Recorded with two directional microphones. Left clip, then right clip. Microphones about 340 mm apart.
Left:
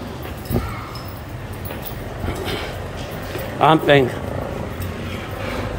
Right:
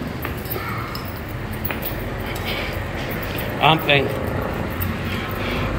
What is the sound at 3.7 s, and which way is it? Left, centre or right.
Speech, centre.